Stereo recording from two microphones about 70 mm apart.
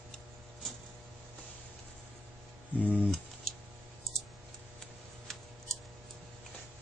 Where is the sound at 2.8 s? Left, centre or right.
Left.